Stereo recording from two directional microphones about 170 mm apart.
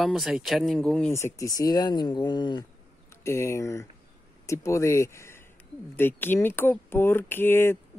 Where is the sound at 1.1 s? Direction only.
15° left (ahead or behind).